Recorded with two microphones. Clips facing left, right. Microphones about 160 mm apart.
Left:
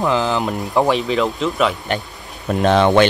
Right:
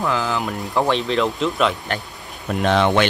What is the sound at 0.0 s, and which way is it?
Speech, 20° left (ahead or behind).